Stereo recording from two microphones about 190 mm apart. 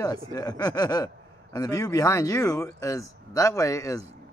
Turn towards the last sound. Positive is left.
turn(degrees=15)  # may be behind; listen again after turning